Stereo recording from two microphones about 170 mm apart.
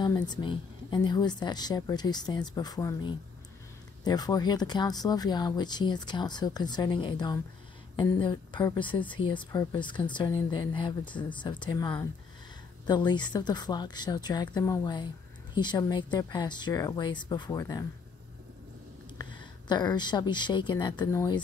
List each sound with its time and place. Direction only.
0.0 s speech: 25° left (ahead or behind)
8.8 s speech: 10° left (ahead or behind)
9.1 s speech: 30° left (ahead or behind)
19.1 s speech: 25° left (ahead or behind)